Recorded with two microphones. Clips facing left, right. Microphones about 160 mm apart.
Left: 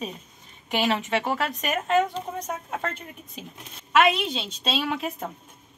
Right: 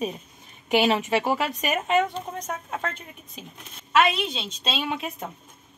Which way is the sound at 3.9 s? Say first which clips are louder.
Left 1 dB; centre (ahead or behind).